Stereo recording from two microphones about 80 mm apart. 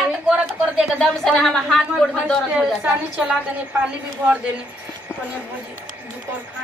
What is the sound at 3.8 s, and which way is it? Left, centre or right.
Speech, centre.